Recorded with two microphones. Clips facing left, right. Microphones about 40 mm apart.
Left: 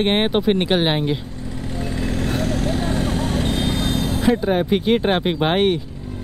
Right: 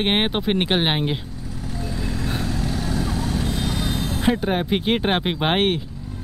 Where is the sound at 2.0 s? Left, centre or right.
Left.